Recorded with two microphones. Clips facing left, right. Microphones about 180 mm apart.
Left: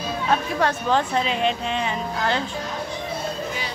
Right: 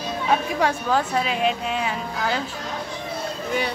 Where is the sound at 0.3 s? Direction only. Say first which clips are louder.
Right 1 dB; 10° right (ahead or behind).